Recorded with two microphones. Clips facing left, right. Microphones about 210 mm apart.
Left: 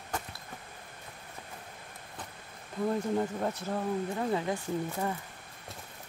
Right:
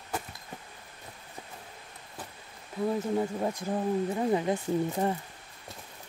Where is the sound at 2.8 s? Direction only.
5° right (ahead or behind); by 5.2 s 25° right (ahead or behind).